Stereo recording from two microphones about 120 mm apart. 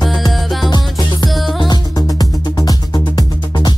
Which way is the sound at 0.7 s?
35° left (ahead or behind).